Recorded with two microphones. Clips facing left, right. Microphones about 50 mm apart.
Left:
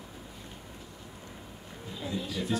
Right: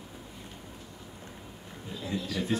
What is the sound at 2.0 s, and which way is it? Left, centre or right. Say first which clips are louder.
Speech: right 1 dB; centre.